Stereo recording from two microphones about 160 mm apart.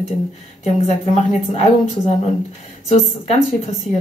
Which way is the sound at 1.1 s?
45° left (ahead or behind).